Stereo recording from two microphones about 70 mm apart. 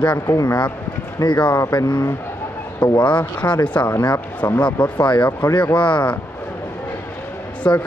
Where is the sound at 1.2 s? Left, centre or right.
Left.